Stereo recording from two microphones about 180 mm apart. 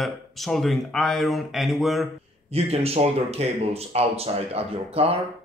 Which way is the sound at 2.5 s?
35° right (ahead or behind).